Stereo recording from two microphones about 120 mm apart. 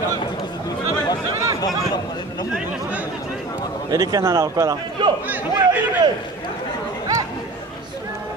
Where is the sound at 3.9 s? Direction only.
30° right (ahead or behind).